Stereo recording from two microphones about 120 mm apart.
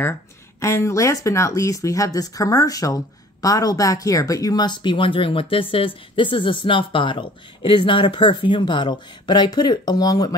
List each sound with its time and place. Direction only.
0.6 s speech: 25° left (ahead or behind)